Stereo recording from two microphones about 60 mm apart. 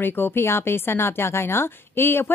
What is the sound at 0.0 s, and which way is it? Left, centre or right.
Speech, left.